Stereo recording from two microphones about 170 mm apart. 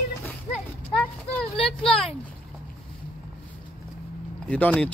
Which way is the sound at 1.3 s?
5° left (ahead or behind).